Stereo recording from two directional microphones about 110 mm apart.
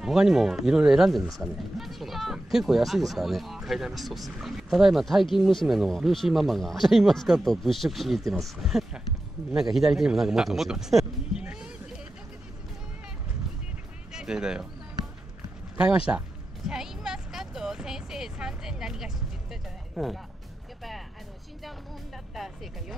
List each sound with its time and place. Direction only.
0.0 s speech: 5° right (ahead or behind)
14.1 s speech: 5° right (ahead or behind)
16.1 s speech: 25° right (ahead or behind)
16.6 s music: 5° right (ahead or behind)
22.3 s music: centre (ahead or behind)